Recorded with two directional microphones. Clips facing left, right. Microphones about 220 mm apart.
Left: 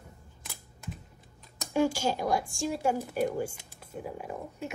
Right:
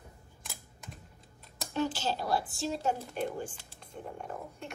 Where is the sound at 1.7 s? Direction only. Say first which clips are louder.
Left 5 dB; 10° left (ahead or behind).